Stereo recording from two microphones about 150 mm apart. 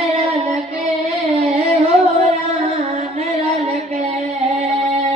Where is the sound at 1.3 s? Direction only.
45° right (ahead or behind).